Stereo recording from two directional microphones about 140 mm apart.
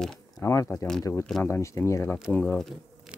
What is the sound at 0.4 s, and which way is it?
Speech, 20° left (ahead or behind).